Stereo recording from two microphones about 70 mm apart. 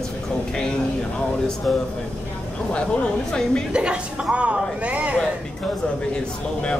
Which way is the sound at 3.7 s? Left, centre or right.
Centre.